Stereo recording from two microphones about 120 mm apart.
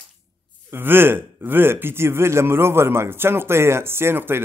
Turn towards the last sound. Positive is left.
turn(degrees=-20)  # may be behind; listen again after turning